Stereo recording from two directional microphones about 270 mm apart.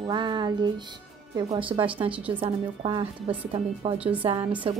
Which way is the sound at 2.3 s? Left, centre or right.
Centre.